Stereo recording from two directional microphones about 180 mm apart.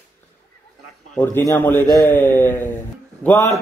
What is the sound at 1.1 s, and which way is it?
Speech, 10° left (ahead or behind).